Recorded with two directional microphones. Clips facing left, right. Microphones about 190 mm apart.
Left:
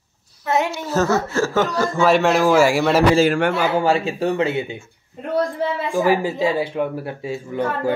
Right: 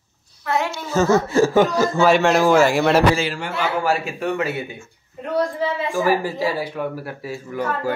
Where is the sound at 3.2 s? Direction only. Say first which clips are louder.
Left 9 dB; 55° left (ahead or behind).